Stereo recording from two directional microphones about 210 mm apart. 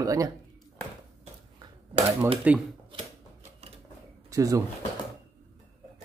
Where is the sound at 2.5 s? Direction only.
5° right (ahead or behind).